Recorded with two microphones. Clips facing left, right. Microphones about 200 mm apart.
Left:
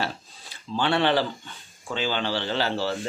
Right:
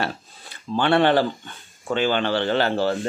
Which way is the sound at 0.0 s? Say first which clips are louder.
Right 3 dB; 55° right (ahead or behind).